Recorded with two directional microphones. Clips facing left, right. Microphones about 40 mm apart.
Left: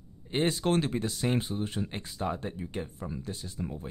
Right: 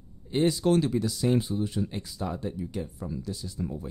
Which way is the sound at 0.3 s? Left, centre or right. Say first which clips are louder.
Right 4 dB; left.